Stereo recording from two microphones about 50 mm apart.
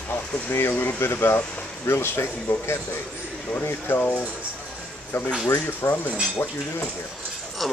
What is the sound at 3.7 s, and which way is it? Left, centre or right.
Speech, left.